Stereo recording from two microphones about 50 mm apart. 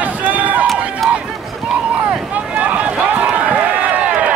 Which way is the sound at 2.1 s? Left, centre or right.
Right.